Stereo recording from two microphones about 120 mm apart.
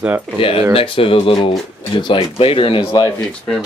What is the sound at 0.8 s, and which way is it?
Speech, 50° left (ahead or behind).